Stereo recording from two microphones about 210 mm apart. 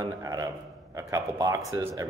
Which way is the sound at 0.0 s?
15° right (ahead or behind).